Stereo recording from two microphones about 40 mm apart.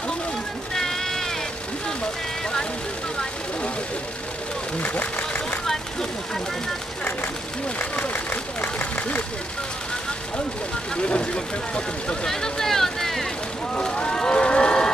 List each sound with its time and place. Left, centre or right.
0.7 s music: centre
4.7 s a sound: left
7.8 s speech: left
11.0 s speech: left
12.3 s speech: centre
13.7 s run: left